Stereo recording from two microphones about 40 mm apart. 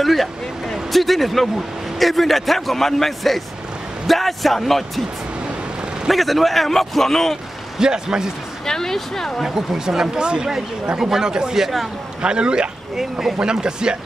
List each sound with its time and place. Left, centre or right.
0.0 s a man's voice: centre
6.0 s a man's voice: centre
7.8 s speech: centre
8.6 s speech: centre
9.4 s speech: centre
12.2 s speech: right